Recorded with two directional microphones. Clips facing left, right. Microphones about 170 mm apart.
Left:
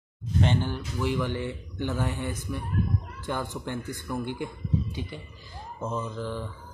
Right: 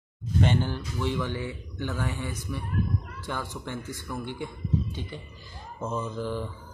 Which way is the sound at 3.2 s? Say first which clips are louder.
Left 5 dB; 15° left (ahead or behind).